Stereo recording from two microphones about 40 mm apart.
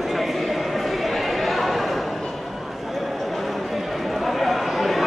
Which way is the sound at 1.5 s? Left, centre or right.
Centre.